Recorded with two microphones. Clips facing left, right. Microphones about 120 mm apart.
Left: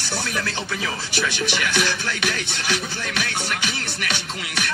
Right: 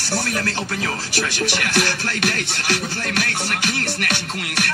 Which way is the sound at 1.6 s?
45° right (ahead or behind).